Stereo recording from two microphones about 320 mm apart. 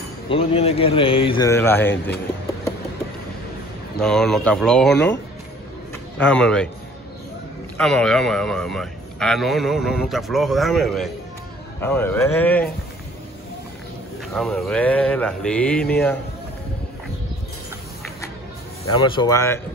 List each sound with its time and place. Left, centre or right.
0.3 s a man's voice: centre
4.0 s speech: centre
7.7 s speech: centre
14.3 s speech: centre
19.0 s a man's voice: centre